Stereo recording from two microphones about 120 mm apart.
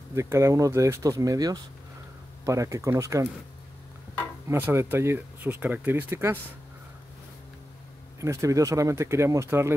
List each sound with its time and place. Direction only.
0.1 s speech: 25° right (ahead or behind)
4.5 s speech: 20° right (ahead or behind)
8.2 s speech: 25° right (ahead or behind)